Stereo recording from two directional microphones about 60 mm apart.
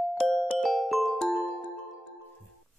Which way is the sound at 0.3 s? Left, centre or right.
Centre.